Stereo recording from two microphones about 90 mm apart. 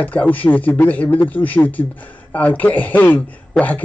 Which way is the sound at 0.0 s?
20° left (ahead or behind).